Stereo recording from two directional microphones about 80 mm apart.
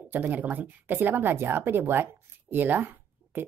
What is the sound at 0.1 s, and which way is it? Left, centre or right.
Speech, right.